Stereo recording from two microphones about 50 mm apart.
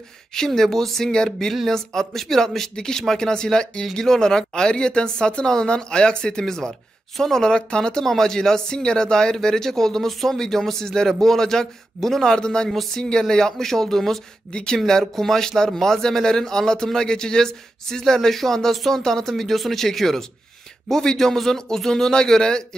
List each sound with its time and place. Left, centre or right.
0.3 s speech: centre